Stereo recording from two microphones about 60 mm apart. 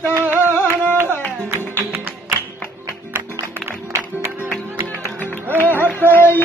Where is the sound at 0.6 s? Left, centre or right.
Right.